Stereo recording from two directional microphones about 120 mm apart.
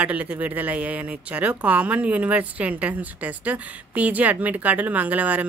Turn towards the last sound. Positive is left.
turn(degrees=-10)  # may be behind; listen again after turning